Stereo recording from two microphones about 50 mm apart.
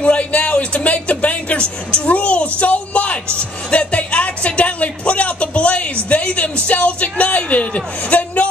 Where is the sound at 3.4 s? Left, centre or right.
Left.